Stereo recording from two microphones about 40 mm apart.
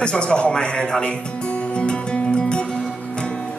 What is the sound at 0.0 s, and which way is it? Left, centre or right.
A man's voice, left.